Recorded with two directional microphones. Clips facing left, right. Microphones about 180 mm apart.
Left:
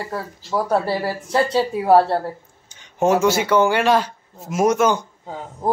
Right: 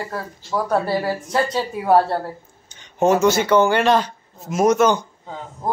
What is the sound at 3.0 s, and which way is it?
Speech, 10° left (ahead or behind).